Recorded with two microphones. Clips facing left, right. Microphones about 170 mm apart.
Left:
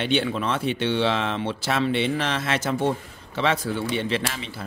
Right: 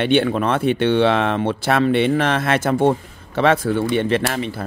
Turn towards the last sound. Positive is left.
turn(degrees=-55)  # may be behind; listen again after turning